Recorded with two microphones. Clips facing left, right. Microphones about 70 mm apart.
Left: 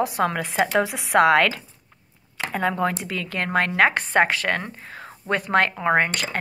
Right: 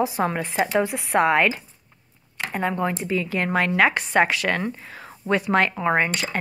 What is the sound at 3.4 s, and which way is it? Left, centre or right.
A woman's voice, left.